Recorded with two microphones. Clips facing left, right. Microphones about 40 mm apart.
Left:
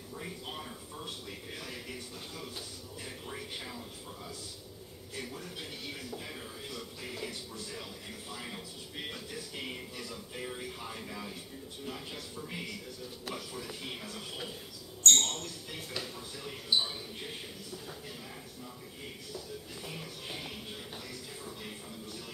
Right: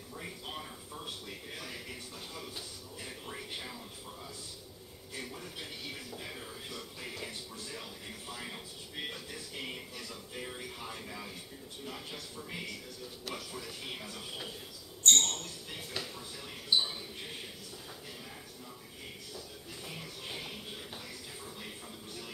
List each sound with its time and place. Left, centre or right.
0.1 s a sound: centre
5.1 s speech: centre
19.9 s speech: centre